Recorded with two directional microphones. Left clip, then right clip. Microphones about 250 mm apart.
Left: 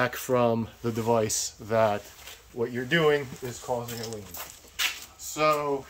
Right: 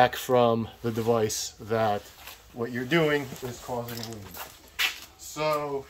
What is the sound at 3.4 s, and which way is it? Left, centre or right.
Speech, right.